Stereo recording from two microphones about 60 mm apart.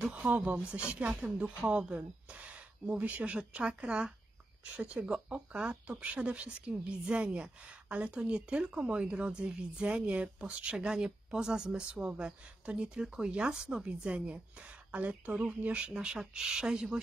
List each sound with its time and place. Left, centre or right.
0.0 s a woman's voice: right